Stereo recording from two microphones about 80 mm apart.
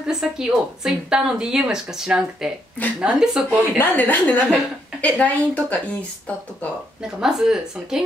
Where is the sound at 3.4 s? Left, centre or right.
Left.